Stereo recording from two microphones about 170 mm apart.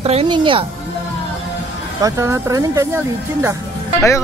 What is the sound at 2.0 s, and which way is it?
Speech, 15° right (ahead or behind).